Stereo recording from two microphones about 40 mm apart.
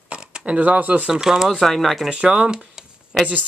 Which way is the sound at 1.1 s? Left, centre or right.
Centre.